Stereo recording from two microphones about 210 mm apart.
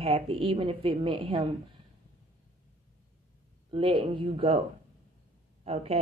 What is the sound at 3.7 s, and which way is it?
Speech, 25° right (ahead or behind).